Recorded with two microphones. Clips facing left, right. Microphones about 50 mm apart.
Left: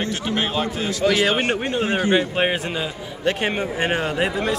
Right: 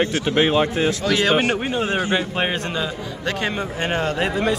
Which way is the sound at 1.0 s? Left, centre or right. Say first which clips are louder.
Left 7 dB; centre.